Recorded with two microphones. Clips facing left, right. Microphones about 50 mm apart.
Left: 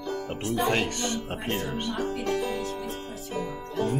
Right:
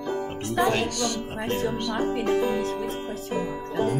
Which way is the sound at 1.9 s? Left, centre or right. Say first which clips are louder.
Right 5 dB; right.